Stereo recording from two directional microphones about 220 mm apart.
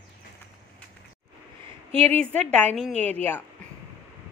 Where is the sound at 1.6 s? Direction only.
25° right (ahead or behind).